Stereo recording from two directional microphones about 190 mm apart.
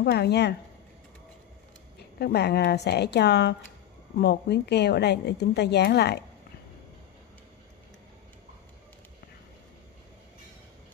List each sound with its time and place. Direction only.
0.0 s a woman's voice: 60° left (ahead or behind)
2.1 s a woman's voice: 60° left (ahead or behind)